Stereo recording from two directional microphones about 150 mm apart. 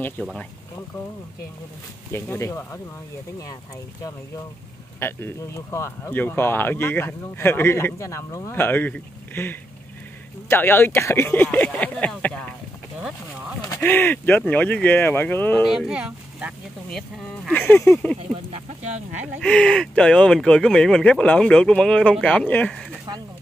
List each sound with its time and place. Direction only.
0.0 s speech: 5° left (ahead or behind)
2.1 s speech: 20° left (ahead or behind)
5.0 s speech: 15° left (ahead or behind)
13.7 s speech: 10° left (ahead or behind)
15.6 s speech: 5° right (ahead or behind)
17.5 s speech: 15° left (ahead or behind)
19.4 s speech: 5° left (ahead or behind)